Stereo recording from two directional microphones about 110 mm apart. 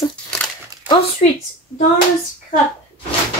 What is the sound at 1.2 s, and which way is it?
Speech, 65° left (ahead or behind).